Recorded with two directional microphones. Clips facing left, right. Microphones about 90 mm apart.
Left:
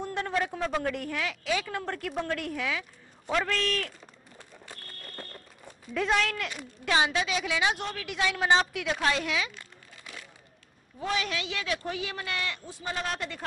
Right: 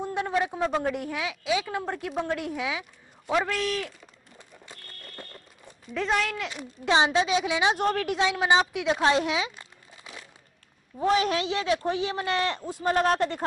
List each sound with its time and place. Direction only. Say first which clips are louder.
0.0 s a sound: right 3 dB; 15° right (ahead or behind)
0.8 s a woman's voice: right 2 dB; 10° right (ahead or behind)
4.6 s fire alarm: left 1 dB; 5° left (ahead or behind)
5.9 s speech: even; centre (ahead or behind)
6.8 s a woman's voice: right 4 dB; 25° right (ahead or behind)
8.9 s a sound: right 5 dB; 25° right (ahead or behind)
11.0 s speech: right 8 dB; 35° right (ahead or behind)